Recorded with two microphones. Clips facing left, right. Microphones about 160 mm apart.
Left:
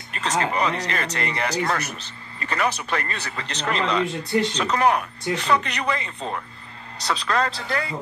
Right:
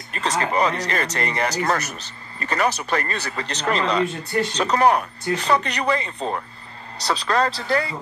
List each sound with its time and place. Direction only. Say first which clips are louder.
0.1 s speech: right 1 dB; 35° right (ahead or behind)